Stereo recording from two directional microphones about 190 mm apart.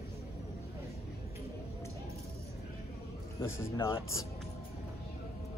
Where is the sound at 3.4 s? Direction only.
15° left (ahead or behind).